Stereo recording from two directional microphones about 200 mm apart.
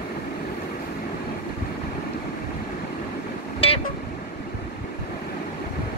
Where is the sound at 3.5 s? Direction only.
30° left (ahead or behind).